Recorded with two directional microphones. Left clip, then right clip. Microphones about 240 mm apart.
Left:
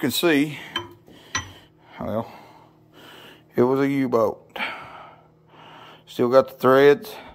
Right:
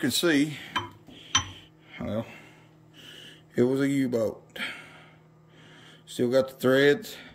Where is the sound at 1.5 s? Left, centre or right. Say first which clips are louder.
Left 1 dB; centre.